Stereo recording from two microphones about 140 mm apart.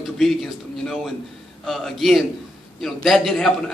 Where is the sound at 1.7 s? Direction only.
Centre (ahead or behind).